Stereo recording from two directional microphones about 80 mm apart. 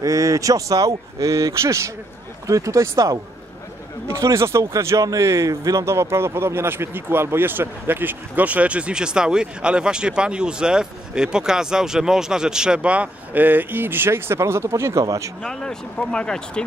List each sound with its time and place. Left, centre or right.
0.0 s speech: right
15.4 s speech: centre